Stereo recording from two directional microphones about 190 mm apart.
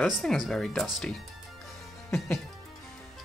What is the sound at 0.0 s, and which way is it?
Speech, centre (ahead or behind).